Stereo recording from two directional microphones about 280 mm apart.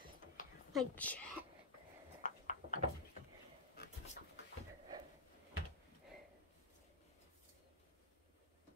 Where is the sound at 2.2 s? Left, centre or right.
Left.